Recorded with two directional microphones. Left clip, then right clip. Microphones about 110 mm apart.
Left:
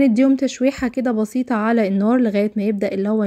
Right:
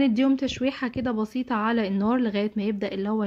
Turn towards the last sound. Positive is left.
turn(degrees=35)  # may be behind; listen again after turning